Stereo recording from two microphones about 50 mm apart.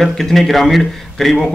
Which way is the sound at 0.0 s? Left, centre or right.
Centre.